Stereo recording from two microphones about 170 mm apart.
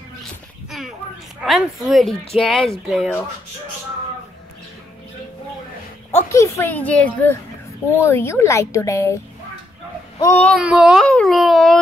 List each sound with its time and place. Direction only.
0.7 s a sound: centre (ahead or behind)
1.4 s speech: centre (ahead or behind)
6.1 s a child's voice: 15° left (ahead or behind)
10.5 s speech: 5° right (ahead or behind)